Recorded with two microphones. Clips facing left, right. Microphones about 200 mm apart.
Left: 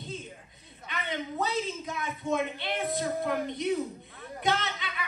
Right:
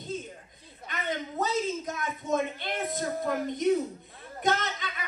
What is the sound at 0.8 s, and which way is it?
A man's voice, 45° right (ahead or behind).